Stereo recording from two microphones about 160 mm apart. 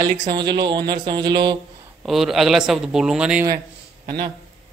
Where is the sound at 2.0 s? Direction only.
Centre (ahead or behind).